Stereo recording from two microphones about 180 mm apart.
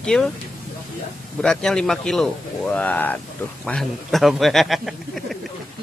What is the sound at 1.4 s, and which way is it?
A man's voice, 5° left (ahead or behind).